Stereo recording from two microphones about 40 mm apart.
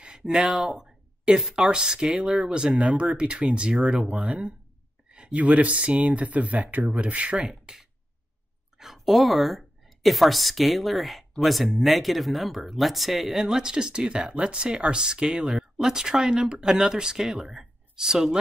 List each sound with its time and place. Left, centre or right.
0.0 s a sound: right
1.5 s speech: centre
5.0 s a sound: right
5.4 s speech: right
7.7 s speech: centre
8.7 s a woman's voice: centre